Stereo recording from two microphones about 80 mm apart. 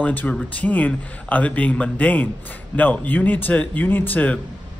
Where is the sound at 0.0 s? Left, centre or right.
Centre.